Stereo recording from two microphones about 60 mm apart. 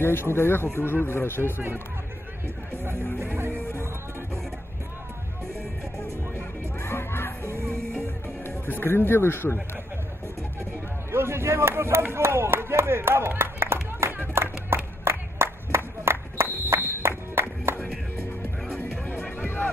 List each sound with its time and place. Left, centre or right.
0.0 s speech: left
3.2 s music: right
6.8 s crowd: left
8.5 s speech: left
10.6 s speech: right
13.3 s a sound: right
16.7 s music: right
18.8 s music: left